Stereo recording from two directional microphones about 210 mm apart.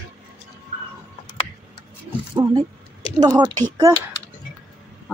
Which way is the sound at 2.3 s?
20° right (ahead or behind).